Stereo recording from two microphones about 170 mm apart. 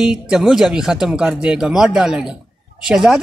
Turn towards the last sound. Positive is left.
turn(degrees=0)  # may be behind; listen again after turning